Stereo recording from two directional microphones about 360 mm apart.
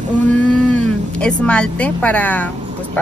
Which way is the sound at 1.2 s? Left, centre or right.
Centre.